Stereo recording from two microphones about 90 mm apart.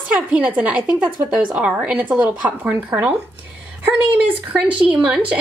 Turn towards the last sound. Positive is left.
turn(degrees=-10)  # may be behind; listen again after turning